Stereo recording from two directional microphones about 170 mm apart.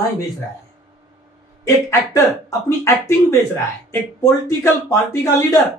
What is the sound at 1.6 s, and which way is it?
Speech, 20° left (ahead or behind).